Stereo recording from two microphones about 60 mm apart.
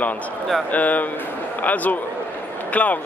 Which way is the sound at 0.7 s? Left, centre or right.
Left.